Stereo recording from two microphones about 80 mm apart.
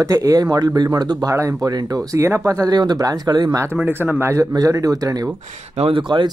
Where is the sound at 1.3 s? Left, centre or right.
Right.